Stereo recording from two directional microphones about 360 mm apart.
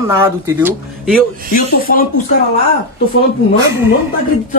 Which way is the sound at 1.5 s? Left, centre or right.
Left.